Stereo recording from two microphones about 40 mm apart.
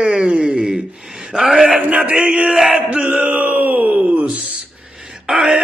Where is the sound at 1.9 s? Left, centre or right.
Right.